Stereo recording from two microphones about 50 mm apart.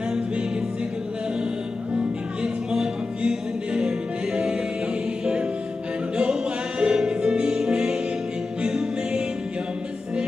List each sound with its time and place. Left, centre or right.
2.4 s music: centre
6.8 s music: centre